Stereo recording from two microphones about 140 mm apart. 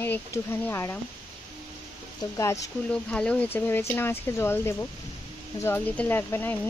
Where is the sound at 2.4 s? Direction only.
20° left (ahead or behind).